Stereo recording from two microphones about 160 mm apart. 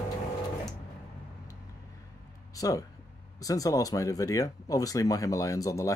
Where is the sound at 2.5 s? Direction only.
20° left (ahead or behind).